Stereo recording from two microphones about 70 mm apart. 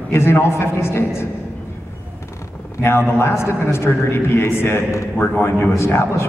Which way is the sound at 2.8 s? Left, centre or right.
Left.